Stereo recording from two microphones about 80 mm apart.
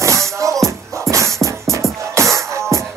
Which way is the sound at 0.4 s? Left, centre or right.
Right.